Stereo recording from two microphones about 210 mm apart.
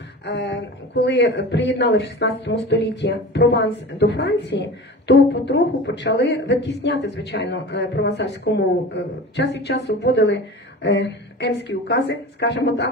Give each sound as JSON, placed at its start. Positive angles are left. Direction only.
{"t": 0.2, "sound": "speech", "side_deg": 55}